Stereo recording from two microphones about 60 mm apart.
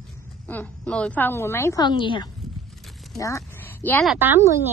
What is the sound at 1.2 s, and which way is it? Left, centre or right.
Speech, left.